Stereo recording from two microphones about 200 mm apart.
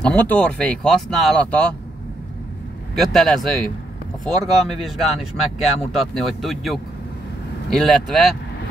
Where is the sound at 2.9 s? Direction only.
Centre (ahead or behind).